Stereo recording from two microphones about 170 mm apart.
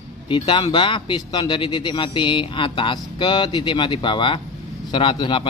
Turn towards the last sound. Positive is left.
turn(degrees=30)  # may be behind; listen again after turning